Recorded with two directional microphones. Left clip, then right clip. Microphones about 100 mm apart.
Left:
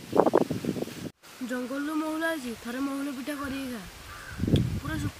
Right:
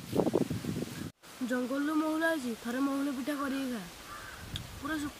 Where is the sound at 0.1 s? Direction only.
70° left (ahead or behind).